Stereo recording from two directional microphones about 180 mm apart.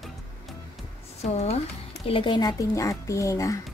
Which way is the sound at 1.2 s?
35° left (ahead or behind).